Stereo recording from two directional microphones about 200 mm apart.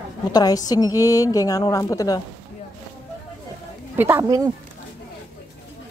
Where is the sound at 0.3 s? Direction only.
20° left (ahead or behind).